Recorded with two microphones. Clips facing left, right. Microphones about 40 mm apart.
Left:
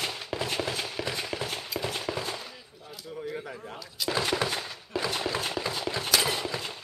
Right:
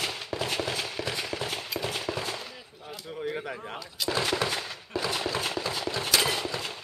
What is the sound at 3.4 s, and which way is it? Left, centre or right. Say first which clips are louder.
Speech: right 3 dB; right.